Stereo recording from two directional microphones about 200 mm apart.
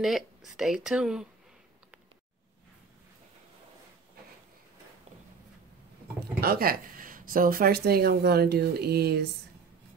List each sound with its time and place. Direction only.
0.0 s speech: centre (ahead or behind)
6.1 s speech: 50° right (ahead or behind)